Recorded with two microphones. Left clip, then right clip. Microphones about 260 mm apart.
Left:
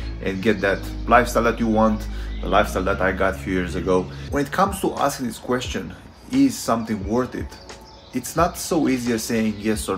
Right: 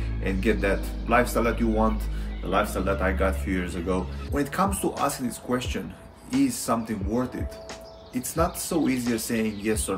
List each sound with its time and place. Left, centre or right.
0.2 s speech: centre
8.1 s speech: centre